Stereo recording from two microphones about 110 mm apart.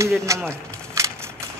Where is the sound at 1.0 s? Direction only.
25° right (ahead or behind).